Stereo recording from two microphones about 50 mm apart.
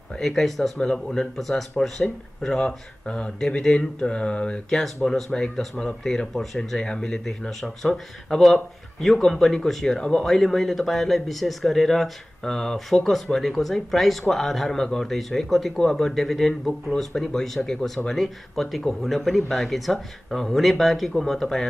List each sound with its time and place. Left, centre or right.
0.2 s speech: centre; by 4.6 s left
4.6 s speech: centre
5.0 s speech: centre